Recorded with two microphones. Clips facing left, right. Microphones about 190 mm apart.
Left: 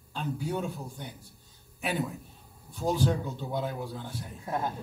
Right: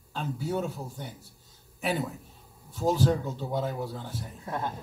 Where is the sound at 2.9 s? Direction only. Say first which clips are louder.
Right 2 dB; 40° right (ahead or behind).